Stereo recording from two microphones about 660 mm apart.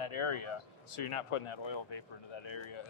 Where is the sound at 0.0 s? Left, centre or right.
Left.